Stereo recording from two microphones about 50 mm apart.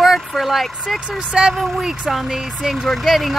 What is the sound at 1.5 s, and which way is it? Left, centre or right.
Speech, centre.